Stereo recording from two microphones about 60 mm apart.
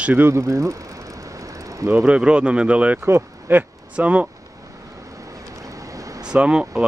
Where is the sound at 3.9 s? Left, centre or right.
Right.